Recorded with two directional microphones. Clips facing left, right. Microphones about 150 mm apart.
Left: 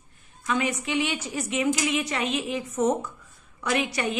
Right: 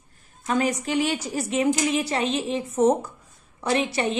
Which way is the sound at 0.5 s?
40° right (ahead or behind).